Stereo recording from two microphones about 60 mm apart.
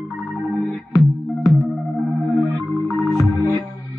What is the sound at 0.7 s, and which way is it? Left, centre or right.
Music, centre.